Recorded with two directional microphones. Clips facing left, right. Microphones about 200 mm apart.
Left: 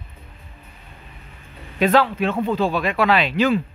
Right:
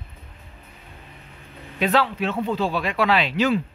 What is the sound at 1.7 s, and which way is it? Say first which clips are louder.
Speech: left 4 dB; 50° left (ahead or behind).